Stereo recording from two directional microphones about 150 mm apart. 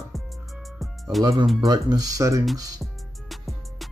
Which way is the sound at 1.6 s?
25° right (ahead or behind).